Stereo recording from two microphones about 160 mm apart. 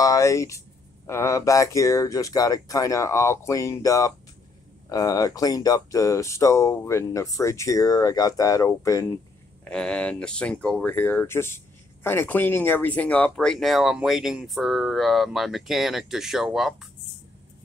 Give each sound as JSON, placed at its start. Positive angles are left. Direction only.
{"t": 0.0, "sound": "speech", "side_deg": 20}
{"t": 9.7, "sound": "speech", "side_deg": 5}